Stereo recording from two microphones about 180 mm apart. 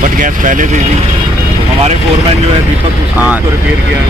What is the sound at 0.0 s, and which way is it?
Speech, 45° right (ahead or behind).